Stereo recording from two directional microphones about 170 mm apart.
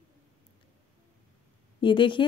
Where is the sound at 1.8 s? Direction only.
30° left (ahead or behind).